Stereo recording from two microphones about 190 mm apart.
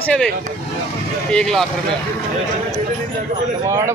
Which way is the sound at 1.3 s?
5° left (ahead or behind).